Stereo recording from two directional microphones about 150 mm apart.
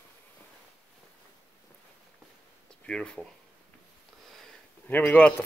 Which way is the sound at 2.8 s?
5° left (ahead or behind).